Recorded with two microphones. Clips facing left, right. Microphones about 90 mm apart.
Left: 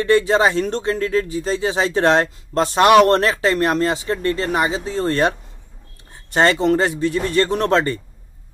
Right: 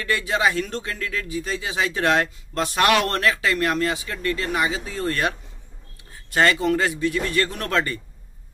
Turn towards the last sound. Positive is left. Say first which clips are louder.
# left 7 dB
turn(degrees=30)  # may be behind; listen again after turning